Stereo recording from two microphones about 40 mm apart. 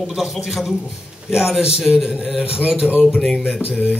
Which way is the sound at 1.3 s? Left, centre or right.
Centre.